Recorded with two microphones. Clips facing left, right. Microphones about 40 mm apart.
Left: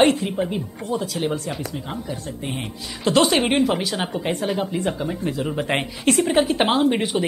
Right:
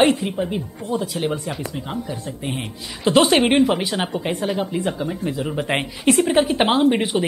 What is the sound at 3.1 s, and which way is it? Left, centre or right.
Speech, right.